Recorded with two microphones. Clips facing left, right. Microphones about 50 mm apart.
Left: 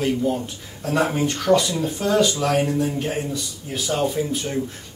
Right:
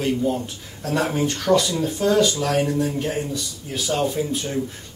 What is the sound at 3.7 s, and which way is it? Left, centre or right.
Speech, centre.